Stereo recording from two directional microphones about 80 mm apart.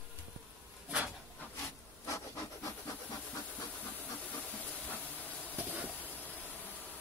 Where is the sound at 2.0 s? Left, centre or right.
Left.